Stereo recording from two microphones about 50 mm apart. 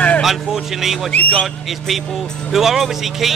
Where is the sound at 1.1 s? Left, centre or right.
Left.